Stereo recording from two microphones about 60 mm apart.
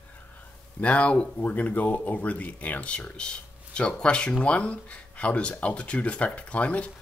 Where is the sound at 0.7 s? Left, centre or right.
Left.